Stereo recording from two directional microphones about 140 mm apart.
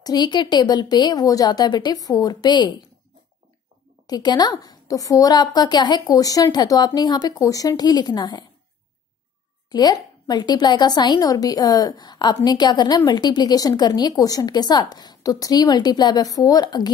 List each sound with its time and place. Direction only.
0.0 s a woman's voice: 30° left (ahead or behind)
4.1 s a woman's voice: 30° left (ahead or behind)
9.7 s a woman's voice: 30° left (ahead or behind)